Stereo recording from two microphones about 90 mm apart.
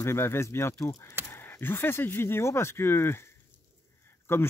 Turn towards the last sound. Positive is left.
turn(degrees=30)  # may be behind; listen again after turning